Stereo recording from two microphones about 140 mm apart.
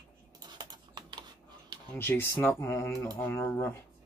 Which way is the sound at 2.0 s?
15° left (ahead or behind).